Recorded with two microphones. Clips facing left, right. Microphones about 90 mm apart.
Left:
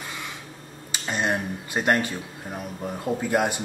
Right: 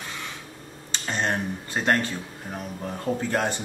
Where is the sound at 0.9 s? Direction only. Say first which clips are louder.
Left 1 dB; 10° left (ahead or behind).